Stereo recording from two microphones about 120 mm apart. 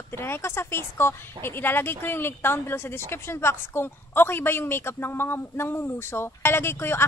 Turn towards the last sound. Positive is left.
turn(degrees=20)  # may be behind; listen again after turning